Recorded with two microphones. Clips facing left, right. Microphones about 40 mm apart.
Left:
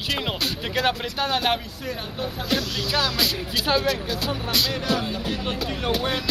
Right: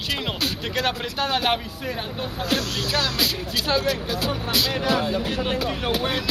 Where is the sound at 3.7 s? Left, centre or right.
Centre.